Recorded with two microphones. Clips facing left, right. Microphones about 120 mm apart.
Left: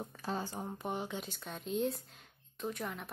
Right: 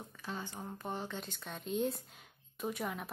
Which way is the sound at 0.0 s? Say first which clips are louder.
Left 5 dB; 35° left (ahead or behind).